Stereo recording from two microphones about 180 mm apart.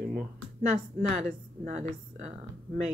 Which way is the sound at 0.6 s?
40° right (ahead or behind).